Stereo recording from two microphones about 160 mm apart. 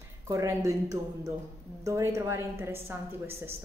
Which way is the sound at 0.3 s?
20° right (ahead or behind).